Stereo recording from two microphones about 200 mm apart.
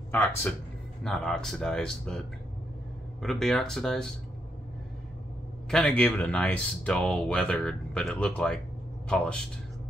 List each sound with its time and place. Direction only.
1.0 s speech: 5° left (ahead or behind)
5.7 s speech: 5° left (ahead or behind)